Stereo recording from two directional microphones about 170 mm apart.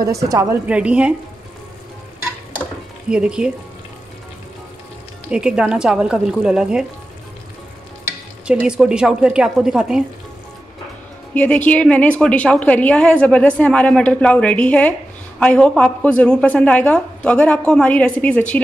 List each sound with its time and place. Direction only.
0.0 s a woman's voice: 20° right (ahead or behind)
0.7 s a woman's voice: 5° right (ahead or behind)
3.1 s speech: 5° right (ahead or behind)
5.3 s speech: 5° right (ahead or behind)
8.5 s speech: 5° right (ahead or behind)
11.3 s a woman's voice: 10° left (ahead or behind)